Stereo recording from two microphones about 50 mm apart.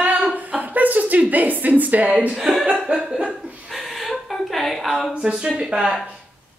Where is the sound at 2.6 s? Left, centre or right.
Right.